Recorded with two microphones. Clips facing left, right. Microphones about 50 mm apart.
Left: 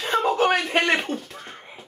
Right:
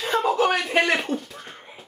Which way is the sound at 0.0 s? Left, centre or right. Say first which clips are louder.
Even; centre.